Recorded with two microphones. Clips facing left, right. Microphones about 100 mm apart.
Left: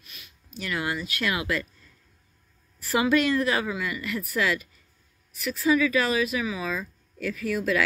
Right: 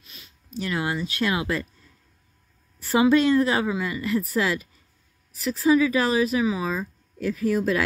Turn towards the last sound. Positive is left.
turn(degrees=-30)  # may be behind; listen again after turning